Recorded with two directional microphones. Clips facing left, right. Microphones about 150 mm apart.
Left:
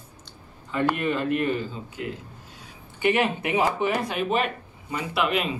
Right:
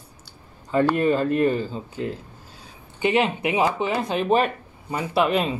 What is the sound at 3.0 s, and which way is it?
A man's voice, 20° right (ahead or behind).